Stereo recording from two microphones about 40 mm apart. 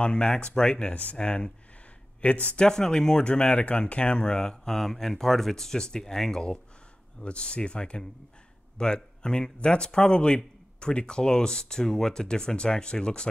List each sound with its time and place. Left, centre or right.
0.0 s a man's voice: left
2.6 s speech: centre
3.3 s speech: left; by 6.4 s centre
7.2 s a man's voice: left